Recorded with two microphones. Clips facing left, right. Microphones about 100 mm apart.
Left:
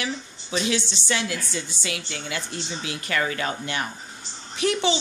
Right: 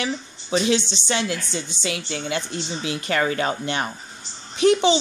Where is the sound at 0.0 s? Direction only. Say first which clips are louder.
Right 3 dB; 30° right (ahead or behind).